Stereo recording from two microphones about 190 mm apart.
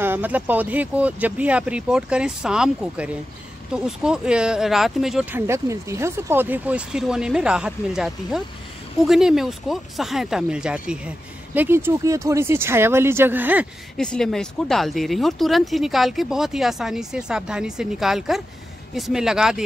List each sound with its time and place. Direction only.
0.0 s speech: 10° right (ahead or behind)
13.9 s speech: 5° left (ahead or behind)